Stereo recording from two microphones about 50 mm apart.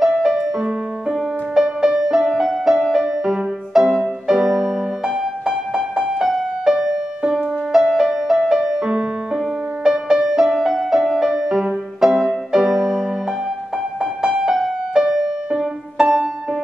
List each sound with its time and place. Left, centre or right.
0.0 s music: centre
14.2 s music: centre